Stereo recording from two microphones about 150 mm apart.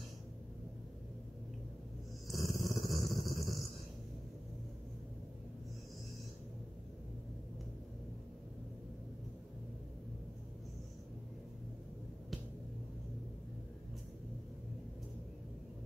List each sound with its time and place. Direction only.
2.2 s dog: centre (ahead or behind)